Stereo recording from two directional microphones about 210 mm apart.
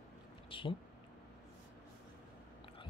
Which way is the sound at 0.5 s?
25° left (ahead or behind).